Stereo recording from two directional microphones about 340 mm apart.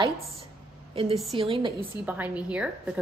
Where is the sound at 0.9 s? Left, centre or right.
Centre.